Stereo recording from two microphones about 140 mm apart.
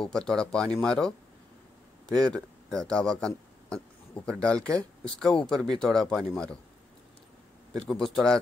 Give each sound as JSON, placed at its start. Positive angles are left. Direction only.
{"t": 0.0, "sound": "speech", "side_deg": 5}
{"t": 7.8, "sound": "speech", "side_deg": 5}